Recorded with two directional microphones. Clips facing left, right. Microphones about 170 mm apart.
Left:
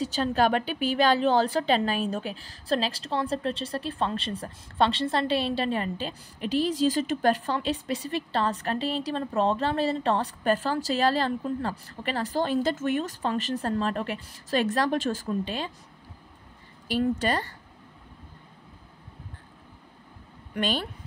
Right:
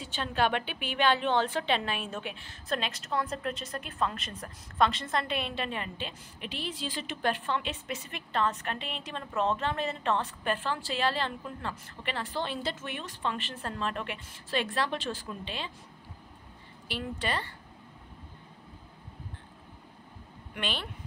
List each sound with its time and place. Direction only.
0.0 s a woman's voice: 40° left (ahead or behind)
17.2 s speech: 45° left (ahead or behind)
20.5 s a woman's voice: 40° left (ahead or behind)